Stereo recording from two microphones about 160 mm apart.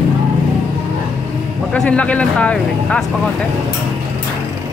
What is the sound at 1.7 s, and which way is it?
Speech, 5° left (ahead or behind).